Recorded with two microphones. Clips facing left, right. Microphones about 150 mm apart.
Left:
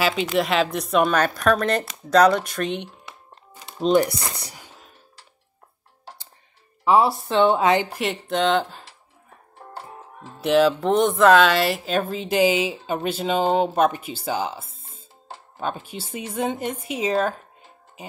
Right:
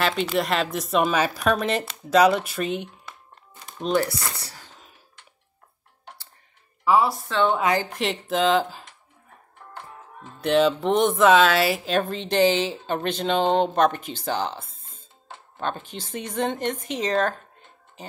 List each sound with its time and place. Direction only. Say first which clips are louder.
0.0 s speech: left 2 dB; centre (ahead or behind)
3.8 s speech: left 5 dB; 20° left (ahead or behind)
6.8 s a woman's voice: left 2 dB; 25° left (ahead or behind)
7.9 s speech: even; centre (ahead or behind)
9.6 s music: left 3 dB; 35° left (ahead or behind)
10.4 s speech: left 2 dB; centre (ahead or behind)
14.9 s music: left 3 dB; 35° left (ahead or behind)
15.6 s speech: left 1 dB; 10° left (ahead or behind)